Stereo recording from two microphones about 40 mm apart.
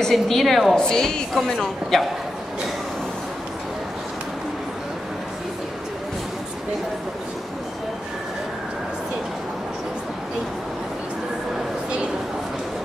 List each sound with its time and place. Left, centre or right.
0.1 s a woman's voice: centre
0.7 s a woman's voice: centre